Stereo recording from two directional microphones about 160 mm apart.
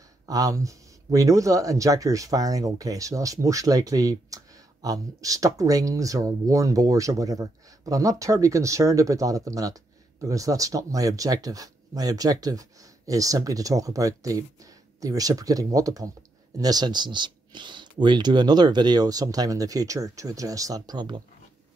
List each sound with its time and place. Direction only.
0.3 s speech: 20° right (ahead or behind)